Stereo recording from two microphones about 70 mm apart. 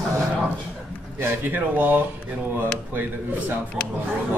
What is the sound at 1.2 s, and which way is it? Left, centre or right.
Speech, right.